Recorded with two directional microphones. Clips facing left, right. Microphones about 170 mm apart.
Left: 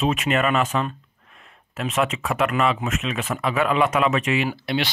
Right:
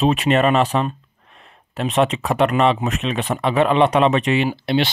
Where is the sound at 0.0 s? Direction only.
35° right (ahead or behind).